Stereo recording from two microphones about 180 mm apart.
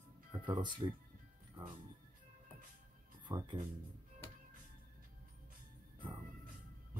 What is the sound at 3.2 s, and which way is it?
Speech, 25° right (ahead or behind).